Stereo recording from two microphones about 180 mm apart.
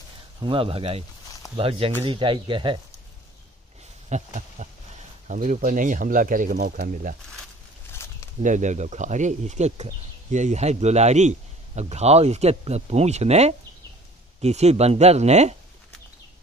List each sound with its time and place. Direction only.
0.4 s a man's voice: 30° right (ahead or behind)
4.1 s a sound: 40° right (ahead or behind)
5.3 s speech: 45° right (ahead or behind)
8.4 s a man's voice: 45° right (ahead or behind)